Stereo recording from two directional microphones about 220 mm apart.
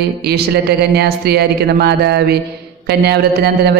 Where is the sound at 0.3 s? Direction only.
45° right (ahead or behind).